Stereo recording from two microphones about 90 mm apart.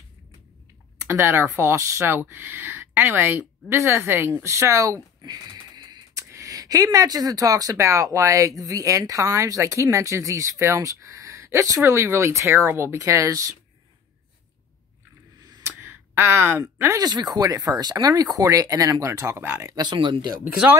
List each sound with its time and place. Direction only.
1.0 s speech: 25° right (ahead or behind)
5.2 s speech: 50° right (ahead or behind)
16.2 s speech: 25° right (ahead or behind)
17.0 s speech: 50° right (ahead or behind); by 19.7 s 25° right (ahead or behind)
19.7 s speech: 55° right (ahead or behind)